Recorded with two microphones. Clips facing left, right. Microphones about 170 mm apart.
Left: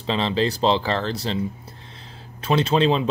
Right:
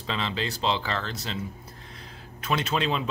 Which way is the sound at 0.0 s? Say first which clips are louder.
Left 8 dB; 30° left (ahead or behind).